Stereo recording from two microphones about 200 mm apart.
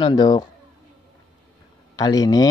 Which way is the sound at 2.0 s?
20° left (ahead or behind).